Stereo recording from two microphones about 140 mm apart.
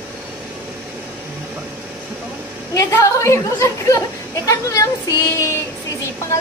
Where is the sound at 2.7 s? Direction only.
20° left (ahead or behind).